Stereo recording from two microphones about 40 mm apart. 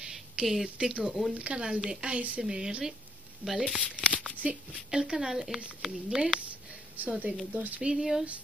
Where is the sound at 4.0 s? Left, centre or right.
Right.